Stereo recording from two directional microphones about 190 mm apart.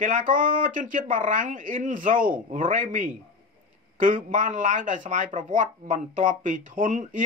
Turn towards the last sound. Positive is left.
turn(degrees=-45)  # may be behind; listen again after turning